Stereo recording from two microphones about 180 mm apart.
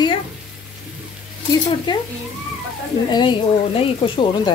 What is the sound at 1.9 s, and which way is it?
Speech, 25° left (ahead or behind).